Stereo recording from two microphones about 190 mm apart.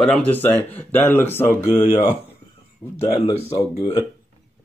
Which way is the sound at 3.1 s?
30° left (ahead or behind).